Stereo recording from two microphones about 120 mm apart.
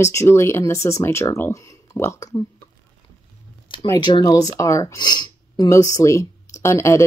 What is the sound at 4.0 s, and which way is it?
Speech, 35° left (ahead or behind).